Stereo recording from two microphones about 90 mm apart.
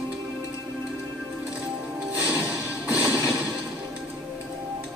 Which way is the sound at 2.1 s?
15° right (ahead or behind).